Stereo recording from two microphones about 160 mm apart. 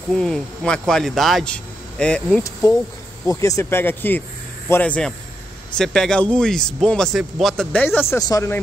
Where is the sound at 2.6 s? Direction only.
20° left (ahead or behind).